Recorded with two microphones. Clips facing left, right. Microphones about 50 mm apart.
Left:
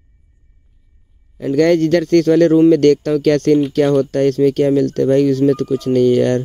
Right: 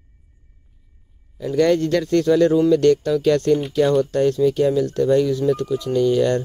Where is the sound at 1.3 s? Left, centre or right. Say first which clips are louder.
Left 4 dB; left.